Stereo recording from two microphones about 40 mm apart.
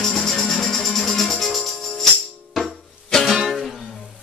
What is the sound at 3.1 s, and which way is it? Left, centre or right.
Music, centre.